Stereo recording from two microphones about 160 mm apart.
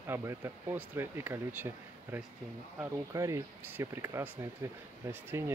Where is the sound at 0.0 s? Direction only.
15° right (ahead or behind).